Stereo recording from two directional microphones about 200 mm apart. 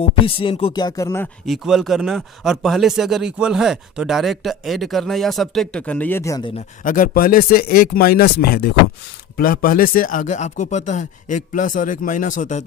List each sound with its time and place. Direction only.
0.2 s speech: 25° left (ahead or behind)
1.4 s speech: centre (ahead or behind); by 6.5 s 15° left (ahead or behind)
6.8 s speech: 40° left (ahead or behind)